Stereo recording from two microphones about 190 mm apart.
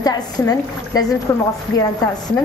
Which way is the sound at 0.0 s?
20° left (ahead or behind).